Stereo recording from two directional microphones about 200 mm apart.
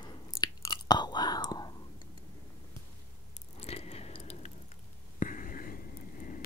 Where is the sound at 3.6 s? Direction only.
30° left (ahead or behind).